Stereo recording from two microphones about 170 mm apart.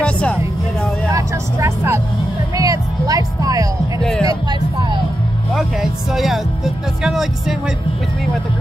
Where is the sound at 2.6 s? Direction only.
20° right (ahead or behind).